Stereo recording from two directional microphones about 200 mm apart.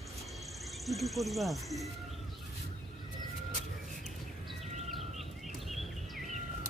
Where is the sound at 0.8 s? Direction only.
Centre (ahead or behind).